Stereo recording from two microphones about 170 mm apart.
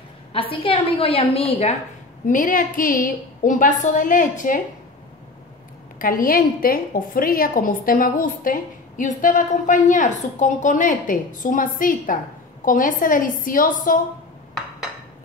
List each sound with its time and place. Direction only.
0.3 s a woman's voice: 30° left (ahead or behind)
2.2 s a woman's voice: 50° left (ahead or behind)
5.9 s a woman's voice: 55° left (ahead or behind)